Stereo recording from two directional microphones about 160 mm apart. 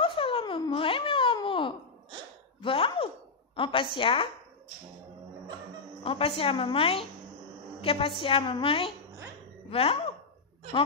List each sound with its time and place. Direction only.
0.0 s a sound: 35° left (ahead or behind)
3.5 s a woman's voice: 30° left (ahead or behind)
6.0 s a woman's voice: 35° left (ahead or behind)